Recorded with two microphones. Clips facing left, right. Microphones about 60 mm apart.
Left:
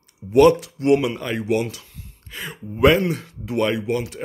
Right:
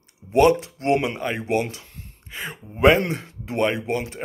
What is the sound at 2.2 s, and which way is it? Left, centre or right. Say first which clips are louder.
Speech: left 1 dB; right.